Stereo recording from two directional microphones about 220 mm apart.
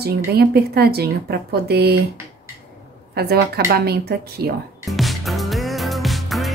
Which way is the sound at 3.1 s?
45° right (ahead or behind).